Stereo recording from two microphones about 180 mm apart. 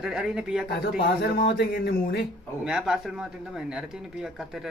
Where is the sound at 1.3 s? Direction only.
65° left (ahead or behind).